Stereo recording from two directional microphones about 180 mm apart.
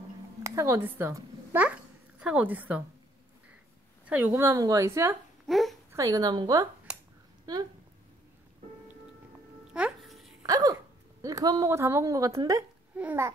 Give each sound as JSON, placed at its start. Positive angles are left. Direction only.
{"t": 0.4, "sound": "a child's voice", "side_deg": -15}
{"t": 4.1, "sound": "a woman's voice", "side_deg": -10}
{"t": 5.5, "sound": "a child's voice", "side_deg": 0}
{"t": 5.9, "sound": "a woman's voice", "side_deg": -20}
{"t": 7.5, "sound": "a sound", "side_deg": -20}
{"t": 9.8, "sound": "music", "side_deg": -5}
{"t": 10.4, "sound": "hiccup", "side_deg": -20}
{"t": 11.2, "sound": "a woman's voice", "side_deg": -20}